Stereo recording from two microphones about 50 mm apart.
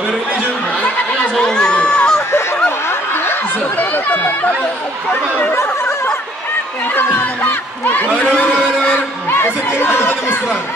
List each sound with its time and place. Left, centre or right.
1.4 s a sound: centre
3.9 s a man's voice: left
7.0 s a man's voice: left
9.3 s speech: left